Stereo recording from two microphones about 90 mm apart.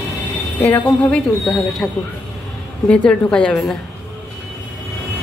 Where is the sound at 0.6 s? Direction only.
15° left (ahead or behind).